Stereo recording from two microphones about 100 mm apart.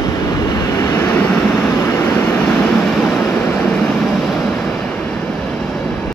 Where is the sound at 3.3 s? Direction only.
20° left (ahead or behind).